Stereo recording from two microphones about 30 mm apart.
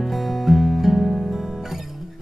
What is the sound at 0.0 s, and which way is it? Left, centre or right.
Music, centre.